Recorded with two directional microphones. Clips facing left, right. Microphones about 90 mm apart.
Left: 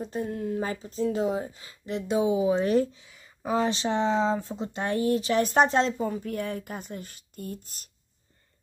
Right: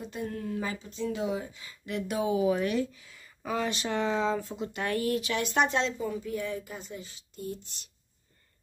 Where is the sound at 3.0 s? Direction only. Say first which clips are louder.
Left 4 dB; 20° left (ahead or behind); by 6.2 s 40° left (ahead or behind).